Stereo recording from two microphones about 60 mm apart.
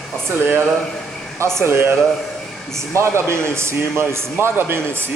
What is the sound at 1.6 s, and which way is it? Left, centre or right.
Speech, right.